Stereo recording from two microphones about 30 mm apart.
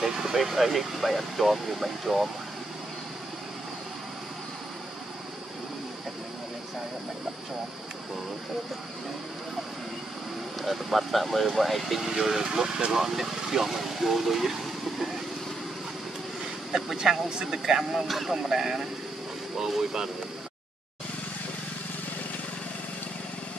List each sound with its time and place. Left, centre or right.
0.0 s vehicle: centre
0.5 s speech: centre
10.6 s speech: centre
16.7 s speech: centre
18.0 s speech: centre
18.3 s speech: centre